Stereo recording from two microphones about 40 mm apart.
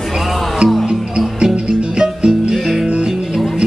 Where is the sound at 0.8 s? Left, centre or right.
Right.